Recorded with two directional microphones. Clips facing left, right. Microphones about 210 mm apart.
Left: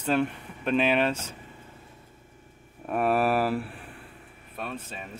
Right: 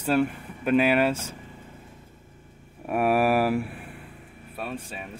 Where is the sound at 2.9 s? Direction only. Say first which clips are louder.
Right 2 dB; 10° right (ahead or behind).